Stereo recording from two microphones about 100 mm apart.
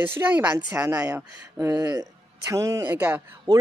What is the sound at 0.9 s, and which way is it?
Speech, 35° right (ahead or behind).